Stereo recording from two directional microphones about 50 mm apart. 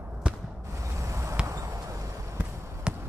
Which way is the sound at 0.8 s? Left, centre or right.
Right.